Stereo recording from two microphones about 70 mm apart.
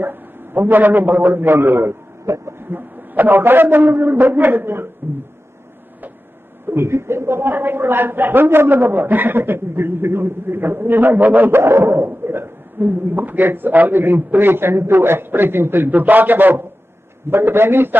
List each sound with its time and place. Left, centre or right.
0.0 s a man's voice: right
2.6 s a man's voice: right
6.7 s a woman's voice: right